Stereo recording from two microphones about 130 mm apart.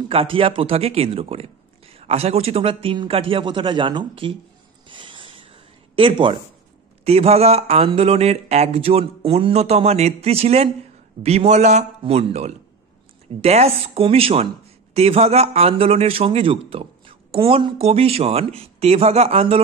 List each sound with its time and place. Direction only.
0.1 s a man's voice: 45° right (ahead or behind)
4.8 s a sound: 40° right (ahead or behind)
7.1 s a man's voice: 50° right (ahead or behind)